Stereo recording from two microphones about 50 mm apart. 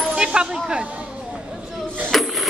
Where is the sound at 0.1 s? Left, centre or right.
Centre.